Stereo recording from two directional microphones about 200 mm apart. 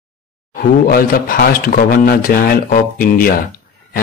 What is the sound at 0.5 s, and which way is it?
Speech, 45° left (ahead or behind).